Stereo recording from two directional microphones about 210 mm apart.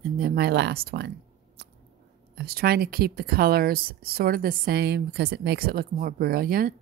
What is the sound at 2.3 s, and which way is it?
Speech, 50° right (ahead or behind).